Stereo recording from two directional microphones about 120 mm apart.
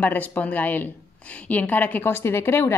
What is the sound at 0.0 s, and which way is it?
Speech, 15° left (ahead or behind).